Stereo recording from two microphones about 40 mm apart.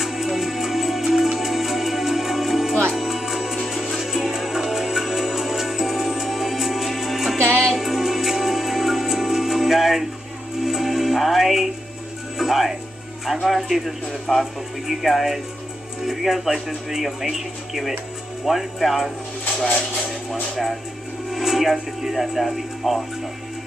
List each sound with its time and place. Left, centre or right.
0.0 s music: centre
14.3 s speech: centre
21.3 s speech: centre